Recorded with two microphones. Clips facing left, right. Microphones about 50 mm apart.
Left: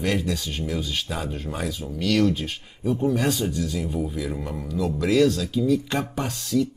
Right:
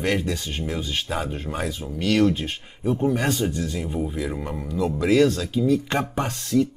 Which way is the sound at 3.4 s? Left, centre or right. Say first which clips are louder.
Right 1 dB; right.